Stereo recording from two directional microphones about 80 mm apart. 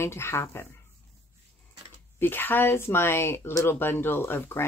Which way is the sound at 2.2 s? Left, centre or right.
Left.